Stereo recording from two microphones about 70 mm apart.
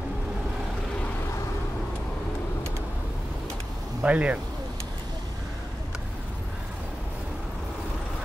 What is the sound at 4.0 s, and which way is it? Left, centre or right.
Speech, centre.